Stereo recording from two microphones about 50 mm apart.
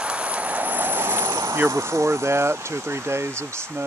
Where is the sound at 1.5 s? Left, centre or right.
Right.